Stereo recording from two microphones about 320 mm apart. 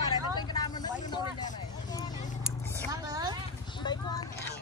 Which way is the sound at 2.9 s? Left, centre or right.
Centre.